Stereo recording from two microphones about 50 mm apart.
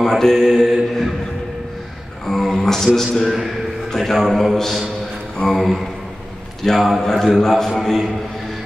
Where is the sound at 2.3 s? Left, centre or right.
Centre.